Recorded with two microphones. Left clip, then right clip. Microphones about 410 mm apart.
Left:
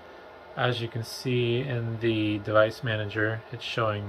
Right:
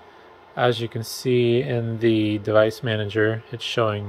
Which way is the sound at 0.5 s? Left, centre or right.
Centre.